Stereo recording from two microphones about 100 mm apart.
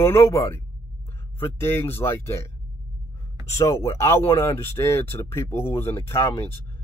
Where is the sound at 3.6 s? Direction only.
30° left (ahead or behind).